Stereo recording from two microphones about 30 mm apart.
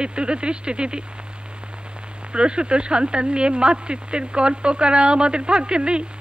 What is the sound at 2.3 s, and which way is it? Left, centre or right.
Speech, right.